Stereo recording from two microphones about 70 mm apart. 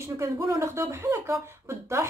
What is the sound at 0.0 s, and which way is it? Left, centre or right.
Speech, right.